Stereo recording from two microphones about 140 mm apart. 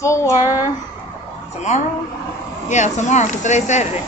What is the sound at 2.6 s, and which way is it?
Speech, 60° left (ahead or behind).